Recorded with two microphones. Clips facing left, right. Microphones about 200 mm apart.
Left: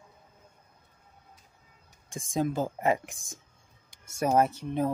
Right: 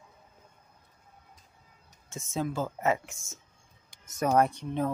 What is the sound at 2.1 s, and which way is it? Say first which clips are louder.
Speech: left 3 dB; 15° left (ahead or behind).